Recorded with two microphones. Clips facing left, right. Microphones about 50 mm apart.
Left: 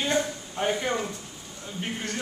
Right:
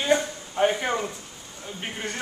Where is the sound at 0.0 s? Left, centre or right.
Centre.